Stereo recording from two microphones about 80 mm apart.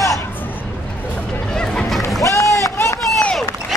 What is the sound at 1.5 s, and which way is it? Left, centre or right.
Music, centre.